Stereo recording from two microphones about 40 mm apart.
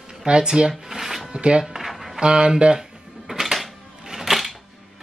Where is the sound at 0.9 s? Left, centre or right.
Centre.